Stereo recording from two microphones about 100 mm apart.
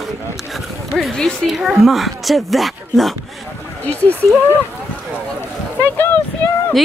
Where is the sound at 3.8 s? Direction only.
15° left (ahead or behind).